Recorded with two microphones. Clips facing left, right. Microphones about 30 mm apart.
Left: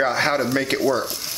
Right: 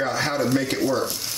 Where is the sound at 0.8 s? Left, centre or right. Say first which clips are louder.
Left 2 dB; centre.